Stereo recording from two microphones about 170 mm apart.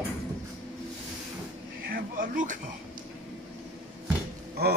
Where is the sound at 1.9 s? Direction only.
60° right (ahead or behind).